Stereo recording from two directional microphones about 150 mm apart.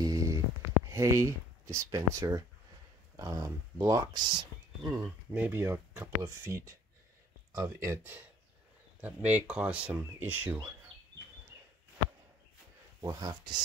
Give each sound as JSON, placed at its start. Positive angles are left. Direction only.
{"t": 0.0, "sound": "a sound", "side_deg": -25}
{"t": 0.9, "sound": "speech", "side_deg": -20}
{"t": 5.3, "sound": "speech", "side_deg": -15}
{"t": 13.0, "sound": "speech", "side_deg": -25}